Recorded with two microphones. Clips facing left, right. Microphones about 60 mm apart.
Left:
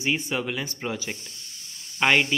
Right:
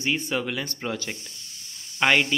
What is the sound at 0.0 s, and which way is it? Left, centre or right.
Speech, centre.